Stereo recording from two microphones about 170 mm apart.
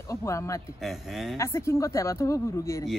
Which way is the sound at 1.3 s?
15° left (ahead or behind).